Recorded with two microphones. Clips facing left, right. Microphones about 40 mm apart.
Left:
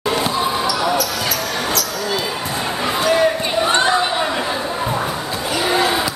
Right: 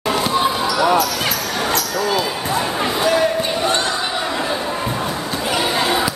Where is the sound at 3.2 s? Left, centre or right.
Left.